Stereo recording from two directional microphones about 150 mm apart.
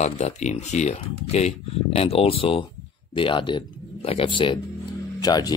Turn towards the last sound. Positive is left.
turn(degrees=25)  # may be behind; listen again after turning